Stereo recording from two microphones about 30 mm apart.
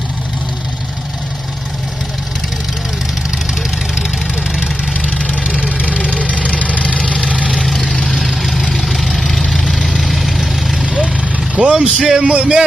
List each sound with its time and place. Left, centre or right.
5.3 s vehicle: right
6.5 s vehicle: left
8.1 s vehicle: centre
11.3 s vehicle: right
11.8 s speech: right